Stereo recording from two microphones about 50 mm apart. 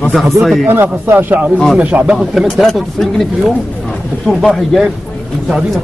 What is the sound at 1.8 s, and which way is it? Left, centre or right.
Speech, right.